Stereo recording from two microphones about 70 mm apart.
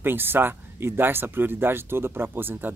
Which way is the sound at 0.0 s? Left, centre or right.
Right.